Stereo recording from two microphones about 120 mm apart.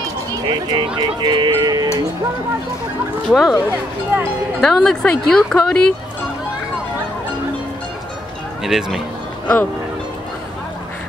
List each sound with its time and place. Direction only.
0.3 s speech: 40° right (ahead or behind)
3.3 s speech: 5° right (ahead or behind)
4.6 s speech: 5° left (ahead or behind)
8.6 s speech: centre (ahead or behind)